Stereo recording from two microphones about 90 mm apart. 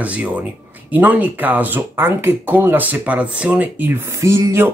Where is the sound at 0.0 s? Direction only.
15° right (ahead or behind).